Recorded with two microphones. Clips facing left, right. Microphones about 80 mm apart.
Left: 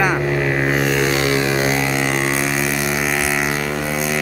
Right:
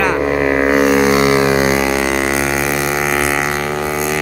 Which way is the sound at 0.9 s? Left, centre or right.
Centre.